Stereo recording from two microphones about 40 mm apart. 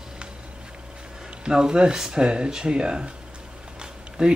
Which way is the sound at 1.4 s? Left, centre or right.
Right.